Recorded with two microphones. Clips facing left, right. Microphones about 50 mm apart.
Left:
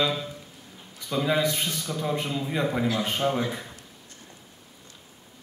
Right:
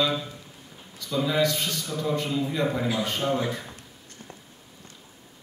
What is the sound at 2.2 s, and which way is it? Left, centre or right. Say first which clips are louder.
Speech: right 3 dB; centre.